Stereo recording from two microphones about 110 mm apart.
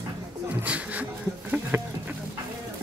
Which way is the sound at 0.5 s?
10° right (ahead or behind).